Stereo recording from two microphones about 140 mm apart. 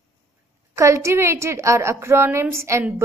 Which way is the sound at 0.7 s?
20° right (ahead or behind).